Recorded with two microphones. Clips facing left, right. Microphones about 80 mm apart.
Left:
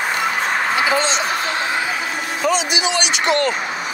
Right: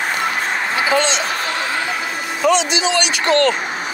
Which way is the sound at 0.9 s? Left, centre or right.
Centre.